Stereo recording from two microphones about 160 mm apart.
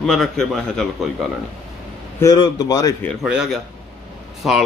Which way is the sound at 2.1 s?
25° left (ahead or behind).